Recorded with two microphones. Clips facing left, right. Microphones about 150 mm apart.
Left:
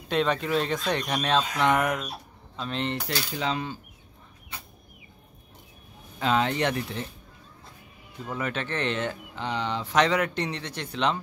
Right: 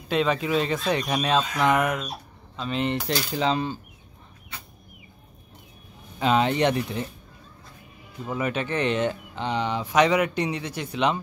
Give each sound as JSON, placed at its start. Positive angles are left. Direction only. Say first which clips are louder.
{"t": 0.1, "sound": "speech", "louder": "right 2 dB", "side_deg": 0}
{"t": 2.8, "sound": "speech", "louder": "right 5 dB", "side_deg": -15}
{"t": 3.3, "sound": "coin", "louder": "right 5 dB", "side_deg": -30}
{"t": 6.1, "sound": "speech", "louder": "right 3 dB", "side_deg": -15}
{"t": 8.3, "sound": "speech", "louder": "right 4 dB", "side_deg": -15}